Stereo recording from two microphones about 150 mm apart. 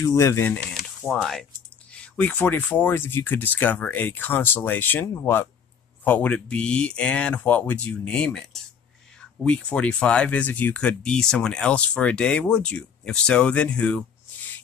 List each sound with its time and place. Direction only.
0.0 s speech: 20° left (ahead or behind)
0.7 s a sound: 5° left (ahead or behind)
1.9 s speech: 10° left (ahead or behind)